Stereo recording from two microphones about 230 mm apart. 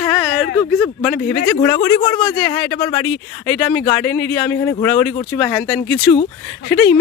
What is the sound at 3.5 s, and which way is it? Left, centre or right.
Speech, centre.